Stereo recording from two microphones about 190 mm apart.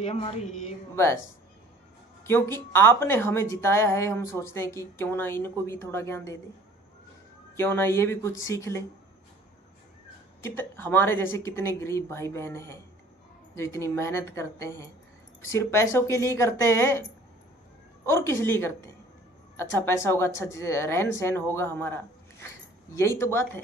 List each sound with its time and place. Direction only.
0.0 s speech: 30° left (ahead or behind)
0.9 s a woman's voice: 15° left (ahead or behind)
2.2 s a woman's voice: 15° left (ahead or behind)
7.5 s a woman's voice: 10° left (ahead or behind)
10.4 s a woman's voice: 10° left (ahead or behind)
18.0 s a woman's voice: 15° left (ahead or behind)
20.0 s a woman's voice: 15° left (ahead or behind)